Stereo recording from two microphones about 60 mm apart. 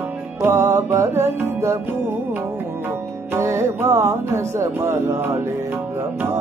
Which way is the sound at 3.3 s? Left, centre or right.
Right.